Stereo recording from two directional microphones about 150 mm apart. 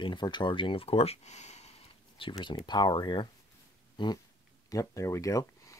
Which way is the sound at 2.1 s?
35° left (ahead or behind).